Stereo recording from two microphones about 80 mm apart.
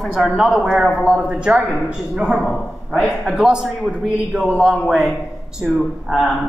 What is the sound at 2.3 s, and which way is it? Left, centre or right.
A man's voice, centre.